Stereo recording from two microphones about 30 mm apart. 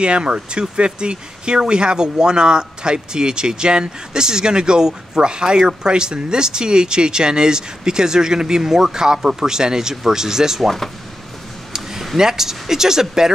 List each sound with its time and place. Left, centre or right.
0.0 s speech: right; by 10.6 s centre
11.7 s a sound: centre
12.2 s speech: centre